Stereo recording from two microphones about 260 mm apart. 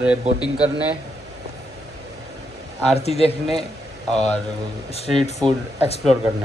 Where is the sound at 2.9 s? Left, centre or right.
Left.